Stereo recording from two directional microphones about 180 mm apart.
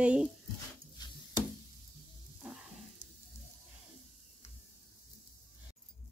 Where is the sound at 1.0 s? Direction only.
25° left (ahead or behind).